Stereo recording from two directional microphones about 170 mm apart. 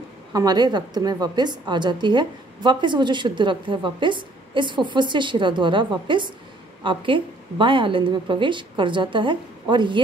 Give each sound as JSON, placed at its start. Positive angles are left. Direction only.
{"t": 0.3, "sound": "a woman's voice", "side_deg": -20}